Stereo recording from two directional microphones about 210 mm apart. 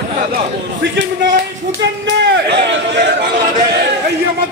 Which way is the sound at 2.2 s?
55° right (ahead or behind).